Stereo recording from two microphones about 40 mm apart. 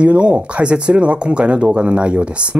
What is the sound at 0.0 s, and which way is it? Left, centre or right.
Speech, right.